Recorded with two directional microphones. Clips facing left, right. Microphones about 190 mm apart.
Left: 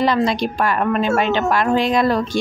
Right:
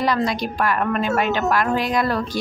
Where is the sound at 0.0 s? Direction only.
25° left (ahead or behind).